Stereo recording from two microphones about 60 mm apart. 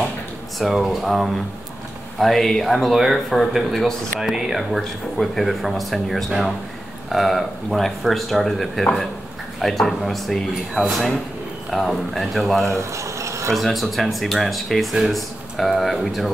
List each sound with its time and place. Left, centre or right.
0.6 s speech: centre
12.6 s a sound: right
13.5 s speech: centre